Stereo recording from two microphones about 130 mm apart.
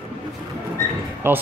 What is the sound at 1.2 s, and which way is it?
Speech, 15° right (ahead or behind).